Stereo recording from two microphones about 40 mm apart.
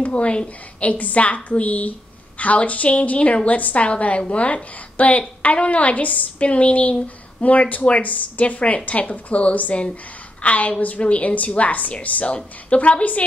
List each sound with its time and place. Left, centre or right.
0.0 s a woman's voice: left